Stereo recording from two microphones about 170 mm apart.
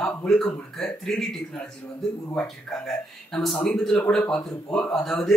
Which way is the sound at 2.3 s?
Centre (ahead or behind).